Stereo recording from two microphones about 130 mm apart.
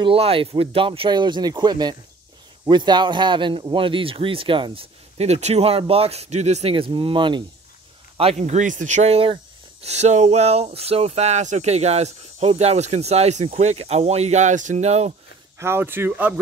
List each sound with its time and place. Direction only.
0.0 s a man's voice: 45° right (ahead or behind)
8.2 s speech: 55° right (ahead or behind)
15.6 s speech: 15° right (ahead or behind)